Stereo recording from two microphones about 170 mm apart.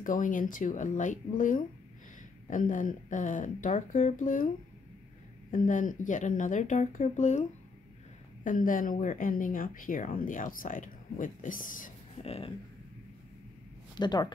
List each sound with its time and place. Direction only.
0.0 s speech: 50° left (ahead or behind)
5.5 s speech: 50° left (ahead or behind)
8.5 s speech: 50° left (ahead or behind)
12.2 s speech: 35° left (ahead or behind)
13.9 s speech: 25° left (ahead or behind)